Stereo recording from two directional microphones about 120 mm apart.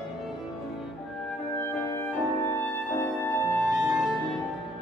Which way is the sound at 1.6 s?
20° left (ahead or behind).